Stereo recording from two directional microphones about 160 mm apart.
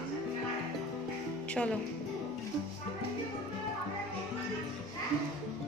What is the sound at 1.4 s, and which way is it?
Music, 10° left (ahead or behind).